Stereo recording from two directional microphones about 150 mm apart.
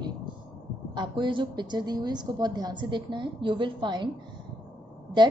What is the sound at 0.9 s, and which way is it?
A woman's voice, 30° right (ahead or behind).